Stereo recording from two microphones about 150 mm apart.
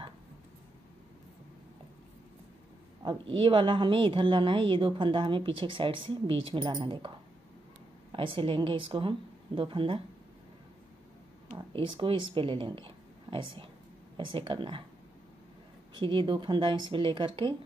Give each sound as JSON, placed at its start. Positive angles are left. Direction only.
{"t": 3.0, "sound": "a woman's voice", "side_deg": -35}
{"t": 8.1, "sound": "a woman's voice", "side_deg": -35}
{"t": 11.5, "sound": "a woman's voice", "side_deg": -35}
{"t": 15.9, "sound": "a woman's voice", "side_deg": -35}